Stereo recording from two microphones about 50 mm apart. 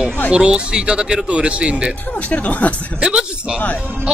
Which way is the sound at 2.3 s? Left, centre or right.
Left.